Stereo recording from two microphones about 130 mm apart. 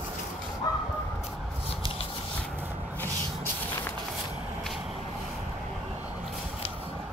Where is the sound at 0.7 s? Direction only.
30° left (ahead or behind).